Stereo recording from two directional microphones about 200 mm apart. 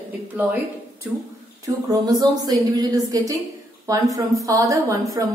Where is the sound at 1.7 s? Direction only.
20° right (ahead or behind).